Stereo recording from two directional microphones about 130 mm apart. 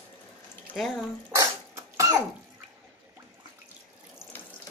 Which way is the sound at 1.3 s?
25° right (ahead or behind).